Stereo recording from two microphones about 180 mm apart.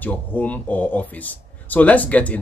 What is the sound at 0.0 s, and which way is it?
Speech, 10° left (ahead or behind).